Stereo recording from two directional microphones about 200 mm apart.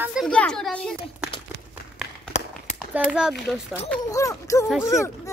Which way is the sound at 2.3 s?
35° left (ahead or behind).